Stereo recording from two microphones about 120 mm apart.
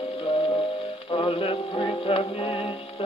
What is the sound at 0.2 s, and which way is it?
Music, 45° left (ahead or behind).